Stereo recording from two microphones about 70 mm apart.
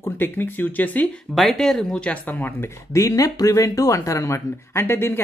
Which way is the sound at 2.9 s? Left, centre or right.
Left.